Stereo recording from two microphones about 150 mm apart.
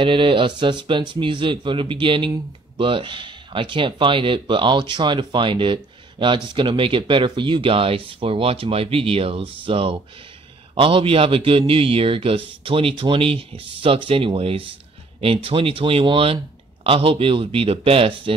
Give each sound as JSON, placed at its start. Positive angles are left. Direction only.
{"t": 0.0, "sound": "speech", "side_deg": -35}